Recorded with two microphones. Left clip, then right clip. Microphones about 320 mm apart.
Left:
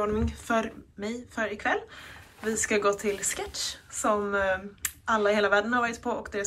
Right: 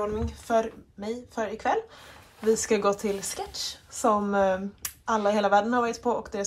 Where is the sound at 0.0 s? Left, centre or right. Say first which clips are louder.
Left 1 dB; centre.